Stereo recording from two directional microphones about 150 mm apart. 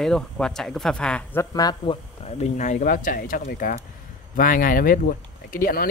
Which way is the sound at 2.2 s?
50° left (ahead or behind).